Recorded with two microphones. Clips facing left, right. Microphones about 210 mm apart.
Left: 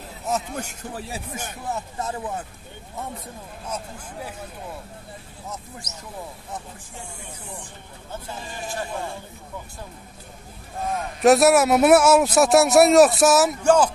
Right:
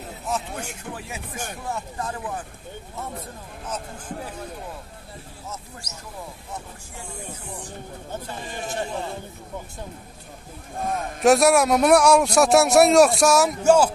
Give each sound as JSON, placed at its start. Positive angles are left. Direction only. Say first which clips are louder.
{"t": 0.3, "sound": "speech", "louder": "left 2 dB", "side_deg": 40}
{"t": 1.3, "sound": "speech", "louder": "right 1 dB", "side_deg": 20}
{"t": 3.6, "sound": "speech", "louder": "right 1 dB", "side_deg": 10}
{"t": 10.9, "sound": "a man's voice", "louder": "left 1 dB", "side_deg": 0}
{"t": 13.7, "sound": "speech", "louder": "right 2 dB", "side_deg": -10}